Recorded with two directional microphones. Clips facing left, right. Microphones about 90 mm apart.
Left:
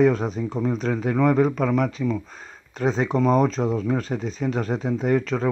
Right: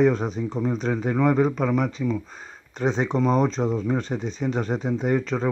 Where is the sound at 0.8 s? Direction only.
20° right (ahead or behind).